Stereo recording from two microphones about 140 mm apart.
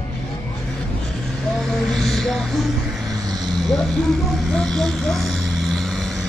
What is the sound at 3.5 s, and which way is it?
Vehicle, 30° right (ahead or behind).